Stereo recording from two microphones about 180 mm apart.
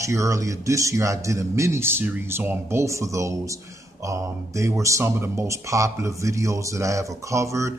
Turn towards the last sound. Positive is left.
turn(degrees=-15)  # may be behind; listen again after turning